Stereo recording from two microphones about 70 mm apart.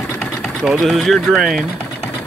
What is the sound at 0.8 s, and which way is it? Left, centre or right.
Speech, centre.